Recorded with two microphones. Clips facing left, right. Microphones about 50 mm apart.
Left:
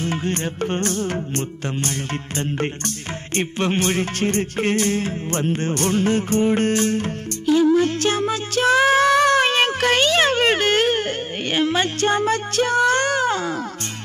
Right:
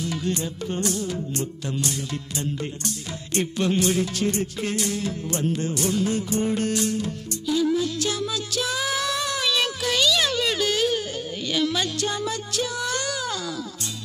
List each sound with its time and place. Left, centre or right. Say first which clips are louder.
0.0 s music: left 3 dB; left